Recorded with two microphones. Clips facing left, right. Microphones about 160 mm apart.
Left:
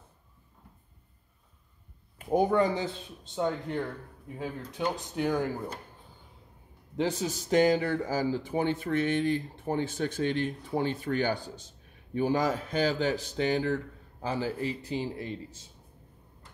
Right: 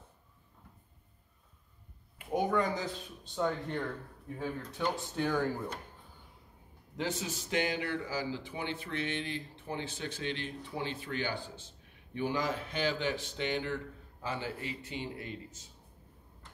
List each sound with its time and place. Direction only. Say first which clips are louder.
2.1 s speech: left 6 dB; 40° left (ahead or behind); by 5.7 s 15° left (ahead or behind)
7.0 s speech: left 6 dB; 35° left (ahead or behind)